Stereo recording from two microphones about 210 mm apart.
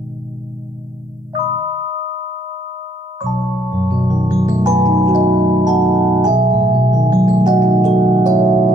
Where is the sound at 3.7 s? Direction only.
20° right (ahead or behind).